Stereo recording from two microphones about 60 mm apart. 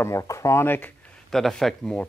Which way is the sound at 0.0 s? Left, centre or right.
Left.